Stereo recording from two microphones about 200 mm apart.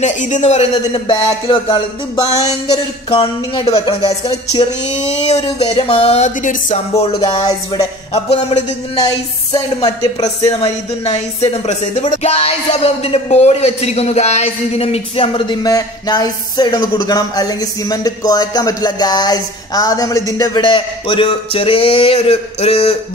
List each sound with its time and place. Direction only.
0.0 s music: 35° left (ahead or behind)
5.0 s speech: 35° left (ahead or behind)
7.0 s music: 25° left (ahead or behind)
8.1 s speech: 30° left (ahead or behind)
9.0 s music: 20° left (ahead or behind)
10.6 s music: 30° left (ahead or behind)